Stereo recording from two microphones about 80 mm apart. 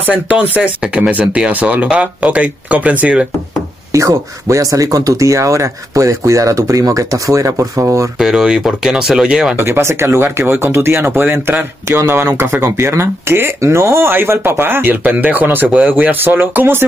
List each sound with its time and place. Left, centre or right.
0.0 s speech: centre
3.9 s speech: right
8.2 s speech: centre
9.6 s speech: right